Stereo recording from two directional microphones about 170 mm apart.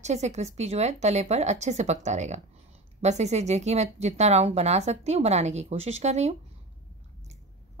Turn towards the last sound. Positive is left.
turn(degrees=-40)  # may be behind; listen again after turning